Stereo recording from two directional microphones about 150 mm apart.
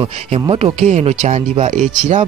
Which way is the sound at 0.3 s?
45° right (ahead or behind).